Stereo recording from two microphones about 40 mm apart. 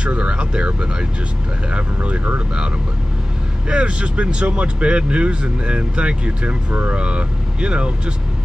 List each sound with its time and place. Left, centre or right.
0.0 s speech: right
3.6 s speech: right